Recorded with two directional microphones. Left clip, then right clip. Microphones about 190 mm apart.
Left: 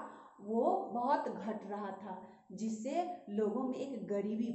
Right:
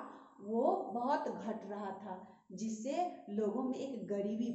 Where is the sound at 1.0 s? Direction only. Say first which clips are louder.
Left 2 dB; 20° left (ahead or behind).